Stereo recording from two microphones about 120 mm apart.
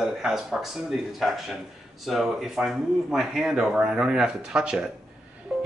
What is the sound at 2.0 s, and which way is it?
Speech, centre (ahead or behind).